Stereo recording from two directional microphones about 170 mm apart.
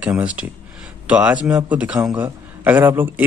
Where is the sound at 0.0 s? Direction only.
5° right (ahead or behind).